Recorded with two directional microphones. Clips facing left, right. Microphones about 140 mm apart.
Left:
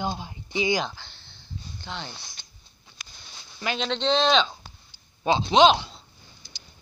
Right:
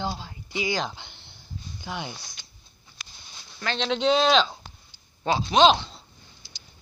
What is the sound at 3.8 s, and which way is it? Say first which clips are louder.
Speech: right 2 dB; 5° right (ahead or behind).